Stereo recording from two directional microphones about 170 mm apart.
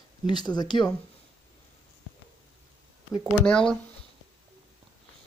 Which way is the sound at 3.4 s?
5° left (ahead or behind).